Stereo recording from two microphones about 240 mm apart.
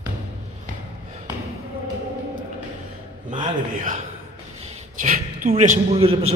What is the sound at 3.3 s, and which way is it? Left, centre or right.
Speech, right.